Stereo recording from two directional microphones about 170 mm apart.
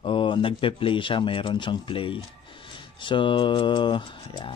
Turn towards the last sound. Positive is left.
turn(degrees=30)  # may be behind; listen again after turning